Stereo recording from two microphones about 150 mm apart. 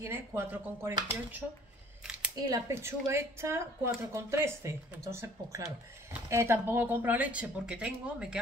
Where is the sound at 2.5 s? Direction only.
15° right (ahead or behind).